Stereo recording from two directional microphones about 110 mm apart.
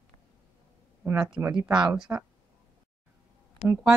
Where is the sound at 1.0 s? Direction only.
25° right (ahead or behind).